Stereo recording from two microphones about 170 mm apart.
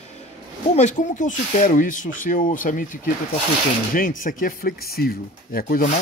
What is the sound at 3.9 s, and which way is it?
Speech, 55° left (ahead or behind).